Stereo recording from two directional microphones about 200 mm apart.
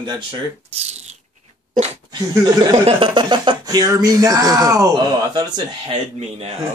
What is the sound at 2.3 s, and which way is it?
Speech, 20° right (ahead or behind).